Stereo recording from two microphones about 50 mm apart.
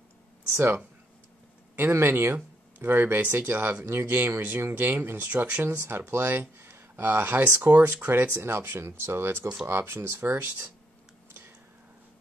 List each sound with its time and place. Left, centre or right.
1.8 s speech: right
3.8 s speech: right
8.4 s speech: right
9.7 s speech: right